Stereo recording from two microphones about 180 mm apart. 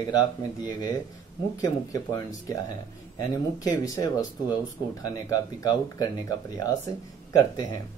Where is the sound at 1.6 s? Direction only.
20° left (ahead or behind).